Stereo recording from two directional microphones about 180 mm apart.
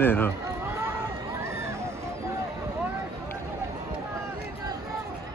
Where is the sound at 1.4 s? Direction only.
15° right (ahead or behind).